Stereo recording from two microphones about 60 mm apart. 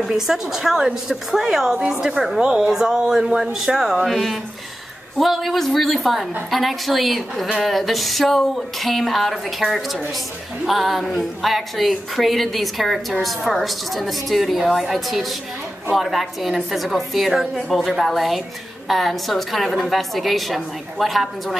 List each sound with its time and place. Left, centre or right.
0.1 s a woman's voice: centre